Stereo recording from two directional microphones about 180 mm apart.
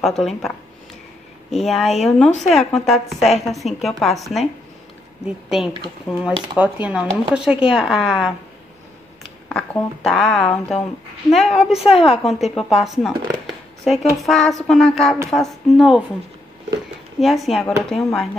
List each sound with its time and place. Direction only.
0.0 s speech: centre (ahead or behind)
1.5 s speech: centre (ahead or behind)
9.2 s a sound: centre (ahead or behind)
10.0 s speech: centre (ahead or behind)
11.8 s a woman's voice: 30° left (ahead or behind)
12.2 s speech: centre (ahead or behind)
17.2 s speech: centre (ahead or behind)